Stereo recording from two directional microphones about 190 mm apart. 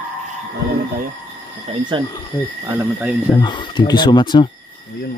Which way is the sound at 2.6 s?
10° right (ahead or behind).